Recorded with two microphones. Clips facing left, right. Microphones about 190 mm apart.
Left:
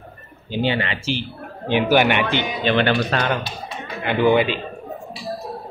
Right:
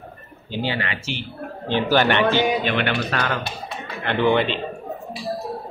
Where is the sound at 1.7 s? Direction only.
15° left (ahead or behind).